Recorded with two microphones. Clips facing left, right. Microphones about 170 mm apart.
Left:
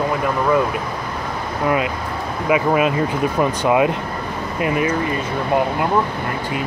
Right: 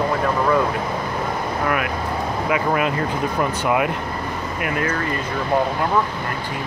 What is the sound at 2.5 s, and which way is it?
Speech, 20° left (ahead or behind).